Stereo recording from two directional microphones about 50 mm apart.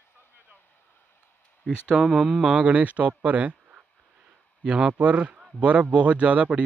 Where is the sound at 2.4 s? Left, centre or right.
Right.